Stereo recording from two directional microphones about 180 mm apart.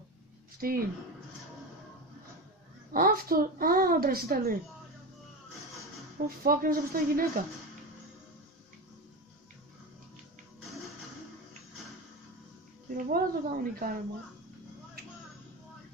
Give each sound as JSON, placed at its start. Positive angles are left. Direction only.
{"t": 0.6, "sound": "a woman's voice", "side_deg": -55}
{"t": 2.9, "sound": "a woman's voice", "side_deg": -50}
{"t": 6.2, "sound": "a woman's voice", "side_deg": -55}
{"t": 12.9, "sound": "a woman's voice", "side_deg": -55}